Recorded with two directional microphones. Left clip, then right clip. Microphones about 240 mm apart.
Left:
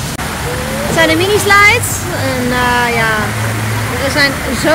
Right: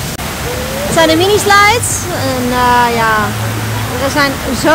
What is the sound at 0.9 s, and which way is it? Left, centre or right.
Speech, centre.